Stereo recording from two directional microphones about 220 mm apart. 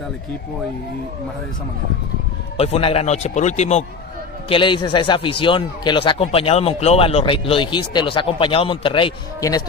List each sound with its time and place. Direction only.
2.6 s a man's voice: 25° left (ahead or behind)